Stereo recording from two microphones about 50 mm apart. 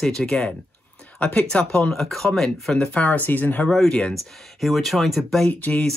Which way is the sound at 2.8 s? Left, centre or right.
Left.